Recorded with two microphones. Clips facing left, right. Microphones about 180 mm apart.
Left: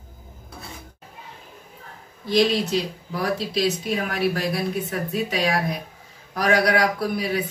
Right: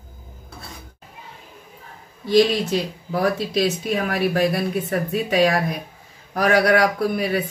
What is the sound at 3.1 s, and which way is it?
Speech, 50° right (ahead or behind).